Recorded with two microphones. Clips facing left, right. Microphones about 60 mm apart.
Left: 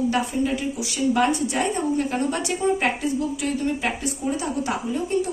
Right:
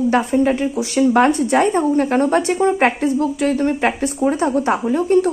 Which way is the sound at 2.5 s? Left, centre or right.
Right.